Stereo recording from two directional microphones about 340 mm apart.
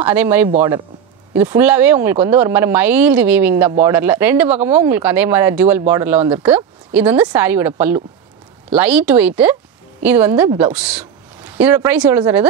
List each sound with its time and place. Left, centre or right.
0.0 s speech: centre